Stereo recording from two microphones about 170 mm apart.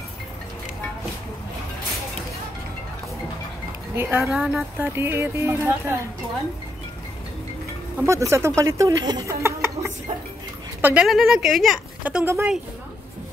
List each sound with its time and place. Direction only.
3.9 s speech: 15° right (ahead or behind)
4.3 s speech: centre (ahead or behind)
8.0 s speech: 15° right (ahead or behind)